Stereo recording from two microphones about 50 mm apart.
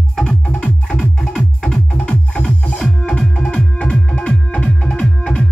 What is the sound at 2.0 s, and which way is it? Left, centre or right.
Music, left.